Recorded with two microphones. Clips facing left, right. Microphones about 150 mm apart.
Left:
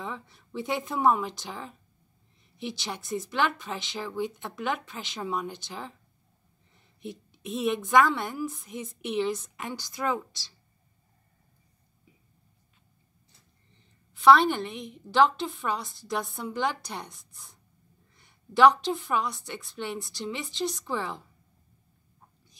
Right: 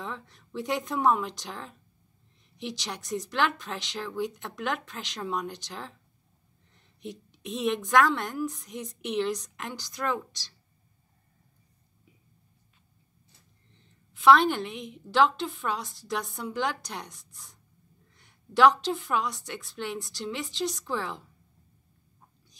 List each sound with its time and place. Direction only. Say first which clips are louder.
0.0 s a woman's voice: left 1 dB; 5° left (ahead or behind)
14.1 s a woman's voice: left 1 dB; centre (ahead or behind)